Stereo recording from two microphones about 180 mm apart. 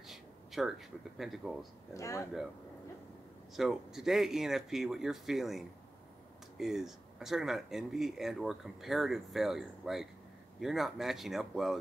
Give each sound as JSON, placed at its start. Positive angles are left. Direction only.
{"t": 0.0, "sound": "speech", "side_deg": 0}
{"t": 2.0, "sound": "speech", "side_deg": 15}
{"t": 3.5, "sound": "speech", "side_deg": 0}
{"t": 6.6, "sound": "speech", "side_deg": 0}